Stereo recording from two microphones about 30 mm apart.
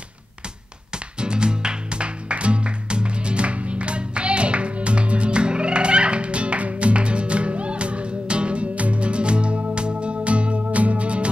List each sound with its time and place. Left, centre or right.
0.9 s music: right